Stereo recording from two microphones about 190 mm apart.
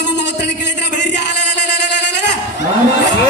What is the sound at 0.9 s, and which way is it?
Music, 40° left (ahead or behind).